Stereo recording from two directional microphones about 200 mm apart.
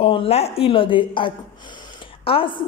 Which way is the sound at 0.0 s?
30° left (ahead or behind).